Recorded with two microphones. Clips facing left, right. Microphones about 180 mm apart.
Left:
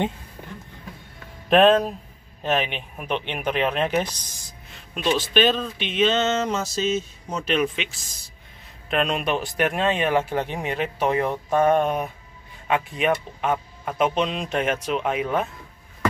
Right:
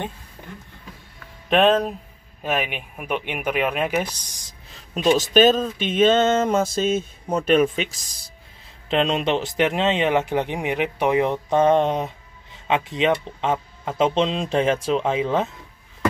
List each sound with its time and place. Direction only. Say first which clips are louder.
1.5 s speech: left 1 dB; centre (ahead or behind)
4.6 s speech: right 5 dB; 35° right (ahead or behind)
8.8 s speech: right 3 dB; 25° right (ahead or behind)